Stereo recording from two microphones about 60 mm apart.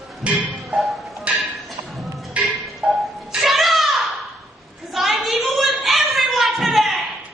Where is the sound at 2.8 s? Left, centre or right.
Centre.